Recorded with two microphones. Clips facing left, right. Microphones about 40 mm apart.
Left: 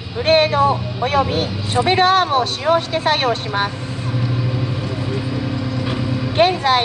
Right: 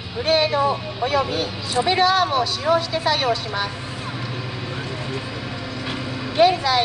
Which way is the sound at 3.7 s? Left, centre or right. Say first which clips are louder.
Left 4 dB; centre.